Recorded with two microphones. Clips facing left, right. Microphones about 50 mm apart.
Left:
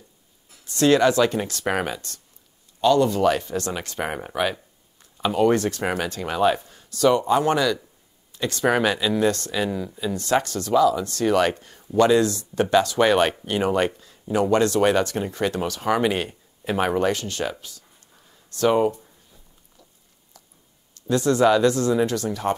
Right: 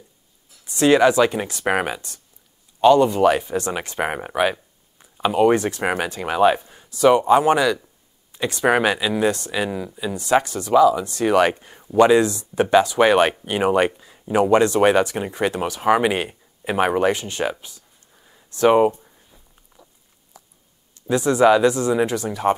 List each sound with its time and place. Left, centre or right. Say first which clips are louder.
0.7 s speech: right 2 dB; centre
19.8 s a sound: right 5 dB; centre
20.9 s speech: right 1 dB; centre